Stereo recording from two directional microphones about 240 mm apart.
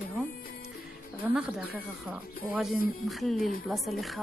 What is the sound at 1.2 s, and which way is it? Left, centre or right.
Speech, centre.